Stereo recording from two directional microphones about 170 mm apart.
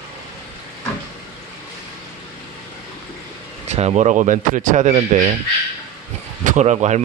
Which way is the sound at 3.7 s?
40° right (ahead or behind).